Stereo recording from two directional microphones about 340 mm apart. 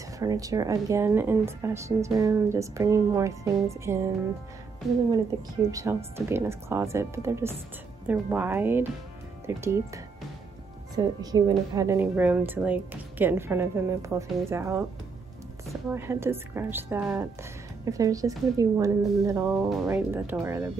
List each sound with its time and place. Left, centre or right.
0.2 s speech: centre
5.7 s speech: centre
11.0 s speech: centre